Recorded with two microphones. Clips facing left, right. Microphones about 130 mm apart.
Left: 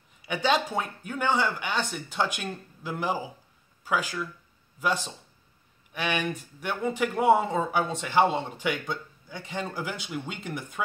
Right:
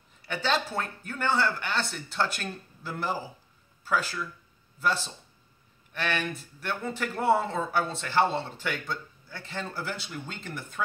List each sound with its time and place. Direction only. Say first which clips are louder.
0.2 s speech: left 3 dB; 15° left (ahead or behind)